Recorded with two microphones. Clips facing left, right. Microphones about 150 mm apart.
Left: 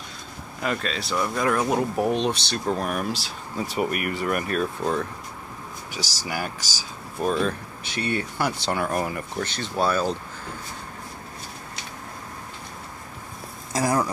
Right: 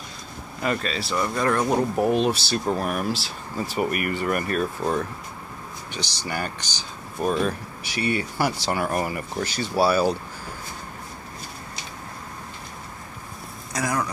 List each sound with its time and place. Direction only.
0.6 s speech: centre (ahead or behind)
6.2 s speech: 5° left (ahead or behind)
7.2 s speech: 5° right (ahead or behind)
13.7 s a sound: 30° left (ahead or behind)